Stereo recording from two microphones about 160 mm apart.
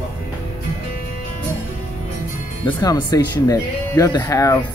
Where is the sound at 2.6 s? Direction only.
25° left (ahead or behind).